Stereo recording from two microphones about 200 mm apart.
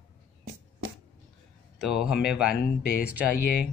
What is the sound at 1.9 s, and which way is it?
Speech, 5° right (ahead or behind).